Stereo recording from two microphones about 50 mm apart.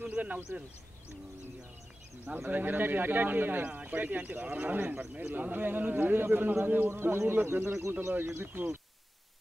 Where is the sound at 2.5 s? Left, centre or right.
Right.